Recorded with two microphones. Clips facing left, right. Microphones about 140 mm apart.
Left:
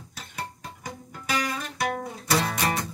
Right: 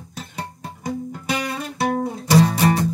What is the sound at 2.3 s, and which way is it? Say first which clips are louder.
Music: right 9 dB; 35° right (ahead or behind).